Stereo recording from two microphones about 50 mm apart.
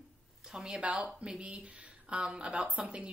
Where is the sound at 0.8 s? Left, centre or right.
Right.